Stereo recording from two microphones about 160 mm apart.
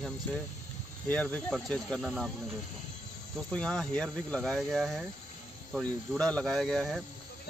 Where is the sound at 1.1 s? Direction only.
5° left (ahead or behind).